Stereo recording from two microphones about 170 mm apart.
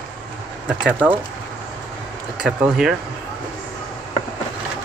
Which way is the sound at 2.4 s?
5° right (ahead or behind).